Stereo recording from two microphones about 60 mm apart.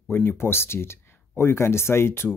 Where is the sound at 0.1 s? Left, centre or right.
Left.